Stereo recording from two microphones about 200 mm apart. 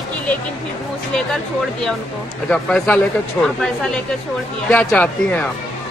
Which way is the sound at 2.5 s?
5° left (ahead or behind).